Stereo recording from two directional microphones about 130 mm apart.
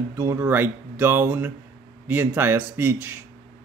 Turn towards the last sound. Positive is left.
turn(degrees=-15)  # may be behind; listen again after turning